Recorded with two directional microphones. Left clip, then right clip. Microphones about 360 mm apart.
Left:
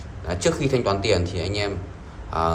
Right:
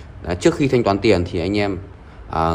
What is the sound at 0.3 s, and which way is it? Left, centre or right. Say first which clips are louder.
A man's voice: right 5 dB; right.